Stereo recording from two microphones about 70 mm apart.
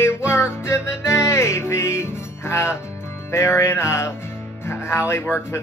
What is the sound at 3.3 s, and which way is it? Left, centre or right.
Speech, left.